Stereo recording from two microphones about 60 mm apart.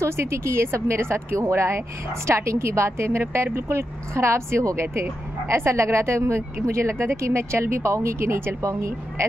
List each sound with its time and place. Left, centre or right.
0.0 s speech: right